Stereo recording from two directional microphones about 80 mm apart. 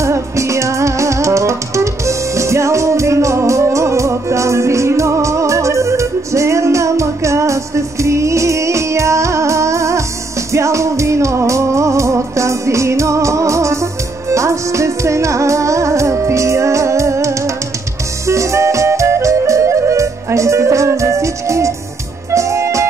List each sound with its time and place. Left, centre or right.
0.0 s music: right